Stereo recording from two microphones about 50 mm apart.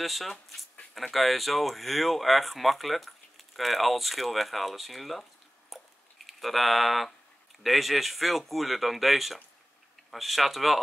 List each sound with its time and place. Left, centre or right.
0.0 s speech: centre
5.7 s a sound: centre
7.6 s speech: centre